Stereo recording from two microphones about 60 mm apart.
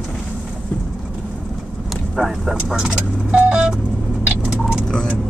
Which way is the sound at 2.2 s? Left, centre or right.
Centre.